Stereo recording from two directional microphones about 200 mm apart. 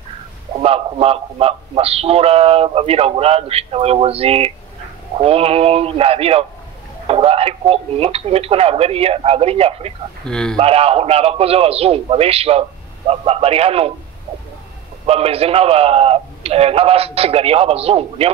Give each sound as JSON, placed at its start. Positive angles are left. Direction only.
{"t": 0.6, "sound": "a man's voice", "side_deg": -30}
{"t": 10.2, "sound": "speech", "side_deg": 5}
{"t": 10.6, "sound": "a man's voice", "side_deg": -30}
{"t": 15.0, "sound": "a man's voice", "side_deg": -30}